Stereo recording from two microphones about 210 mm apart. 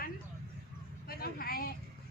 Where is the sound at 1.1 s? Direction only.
45° left (ahead or behind).